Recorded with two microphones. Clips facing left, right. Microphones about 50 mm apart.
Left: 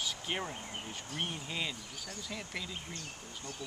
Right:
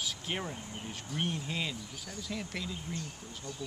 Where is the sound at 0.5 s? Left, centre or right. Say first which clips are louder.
Even; left.